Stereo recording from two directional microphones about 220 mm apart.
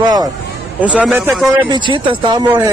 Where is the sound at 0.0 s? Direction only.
20° right (ahead or behind).